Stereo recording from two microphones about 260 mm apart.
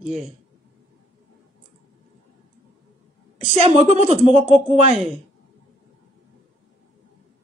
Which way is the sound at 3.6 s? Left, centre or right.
Right.